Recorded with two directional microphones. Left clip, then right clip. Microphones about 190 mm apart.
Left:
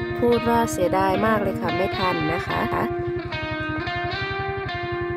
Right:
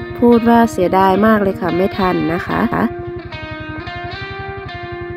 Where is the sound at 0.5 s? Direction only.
20° right (ahead or behind).